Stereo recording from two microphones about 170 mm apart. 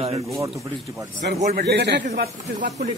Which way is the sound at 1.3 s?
70° right (ahead or behind).